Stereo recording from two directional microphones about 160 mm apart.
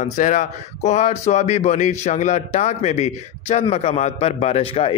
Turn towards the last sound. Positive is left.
turn(degrees=35)  # may be behind; listen again after turning